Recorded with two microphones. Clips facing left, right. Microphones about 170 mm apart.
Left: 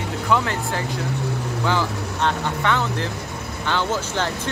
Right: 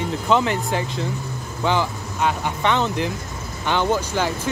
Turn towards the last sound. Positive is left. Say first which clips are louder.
# right 3 dB
turn(degrees=-15)  # may be behind; listen again after turning